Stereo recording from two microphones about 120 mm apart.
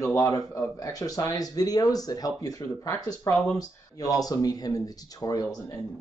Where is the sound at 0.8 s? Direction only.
30° left (ahead or behind).